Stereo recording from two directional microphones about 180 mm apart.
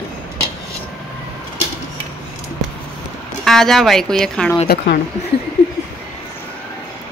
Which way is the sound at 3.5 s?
Centre (ahead or behind).